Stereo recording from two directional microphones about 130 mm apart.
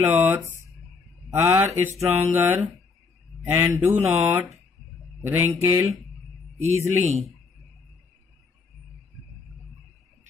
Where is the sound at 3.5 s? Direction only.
20° right (ahead or behind).